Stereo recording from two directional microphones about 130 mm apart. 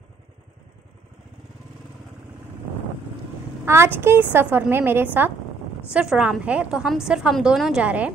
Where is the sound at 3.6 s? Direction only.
20° right (ahead or behind).